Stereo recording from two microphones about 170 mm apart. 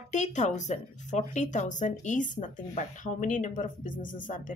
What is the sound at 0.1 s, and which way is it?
Speech, 45° left (ahead or behind).